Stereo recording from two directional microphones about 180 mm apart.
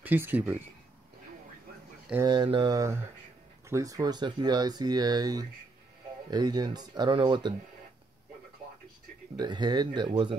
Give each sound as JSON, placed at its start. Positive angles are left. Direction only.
{"t": 0.0, "sound": "speech", "side_deg": -10}
{"t": 2.2, "sound": "speech", "side_deg": -25}
{"t": 9.4, "sound": "speech", "side_deg": -25}